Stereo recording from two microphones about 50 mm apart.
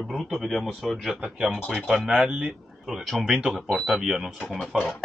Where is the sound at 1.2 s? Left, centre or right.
Centre.